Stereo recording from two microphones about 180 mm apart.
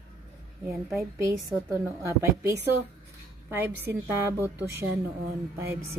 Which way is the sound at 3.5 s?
10° right (ahead or behind).